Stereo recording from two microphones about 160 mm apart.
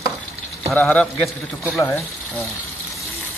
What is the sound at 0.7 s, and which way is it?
Speech, 10° left (ahead or behind).